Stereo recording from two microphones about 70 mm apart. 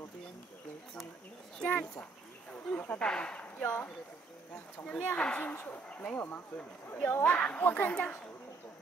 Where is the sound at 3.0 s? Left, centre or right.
Centre.